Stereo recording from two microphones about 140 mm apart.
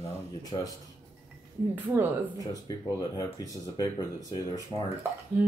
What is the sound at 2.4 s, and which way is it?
Speech, 25° left (ahead or behind).